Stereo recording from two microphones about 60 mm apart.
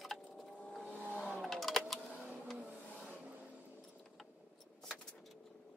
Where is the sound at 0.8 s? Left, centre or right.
Left.